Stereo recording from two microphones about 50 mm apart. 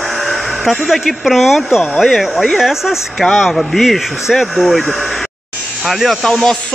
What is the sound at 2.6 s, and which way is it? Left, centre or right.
Speech, centre.